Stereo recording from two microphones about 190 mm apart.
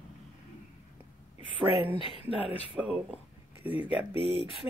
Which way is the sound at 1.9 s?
30° left (ahead or behind).